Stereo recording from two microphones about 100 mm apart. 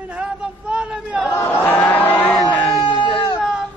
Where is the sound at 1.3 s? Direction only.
20° left (ahead or behind).